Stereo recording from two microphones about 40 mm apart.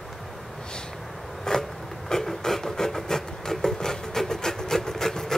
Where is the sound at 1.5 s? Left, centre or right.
Centre.